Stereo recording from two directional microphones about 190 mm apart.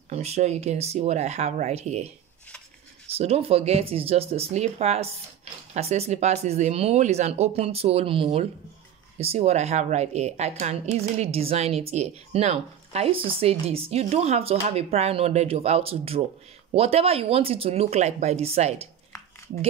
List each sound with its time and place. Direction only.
0.1 s speech: 35° right (ahead or behind)